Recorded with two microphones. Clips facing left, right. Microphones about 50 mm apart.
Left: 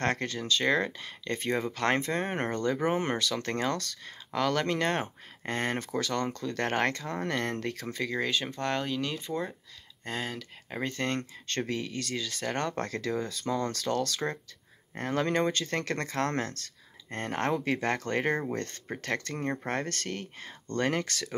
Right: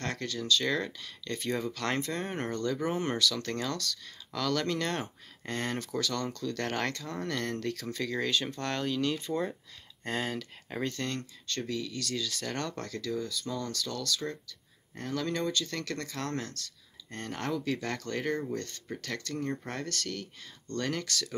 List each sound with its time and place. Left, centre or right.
0.0 s speech: left; by 10.8 s centre
10.8 s speech: left
11.4 s speech: left
12.8 s speech: left